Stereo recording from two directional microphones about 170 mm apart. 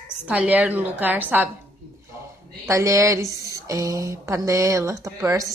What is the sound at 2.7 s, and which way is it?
A woman's voice, 20° right (ahead or behind).